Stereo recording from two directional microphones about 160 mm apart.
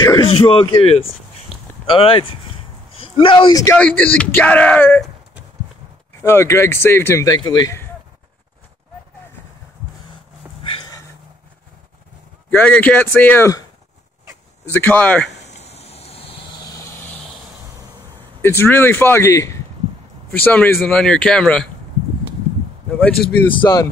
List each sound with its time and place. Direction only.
0.0 s speech: 30° left (ahead or behind)
3.7 s speech: 10° left (ahead or behind)
6.2 s speech: 15° left (ahead or behind)
10.7 s a sound: 25° left (ahead or behind)
12.4 s speech: 10° left (ahead or behind)
14.7 s speech: 10° left (ahead or behind)
15.4 s a sound: 45° left (ahead or behind)
18.4 s speech: 15° left (ahead or behind)
23.5 s speech: 25° left (ahead or behind)